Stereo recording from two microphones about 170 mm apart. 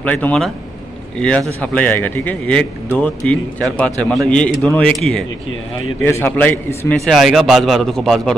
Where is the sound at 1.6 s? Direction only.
10° left (ahead or behind).